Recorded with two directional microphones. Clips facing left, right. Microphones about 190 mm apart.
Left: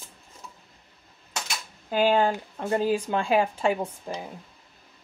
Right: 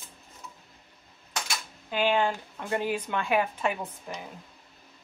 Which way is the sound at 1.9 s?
40° left (ahead or behind).